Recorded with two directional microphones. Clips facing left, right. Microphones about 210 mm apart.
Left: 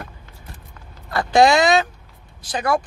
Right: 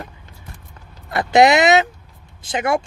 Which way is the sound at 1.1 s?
20° right (ahead or behind).